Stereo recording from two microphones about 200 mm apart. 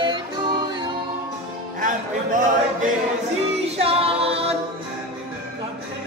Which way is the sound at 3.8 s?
30° right (ahead or behind).